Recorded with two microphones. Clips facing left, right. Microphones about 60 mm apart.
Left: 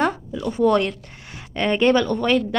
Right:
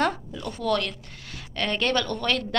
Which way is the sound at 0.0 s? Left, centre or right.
Centre.